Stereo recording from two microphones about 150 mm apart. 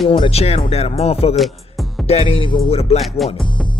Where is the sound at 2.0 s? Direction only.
40° left (ahead or behind).